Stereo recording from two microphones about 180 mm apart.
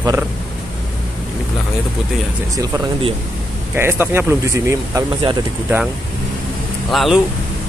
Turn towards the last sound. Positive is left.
turn(degrees=0)  # may be behind; listen again after turning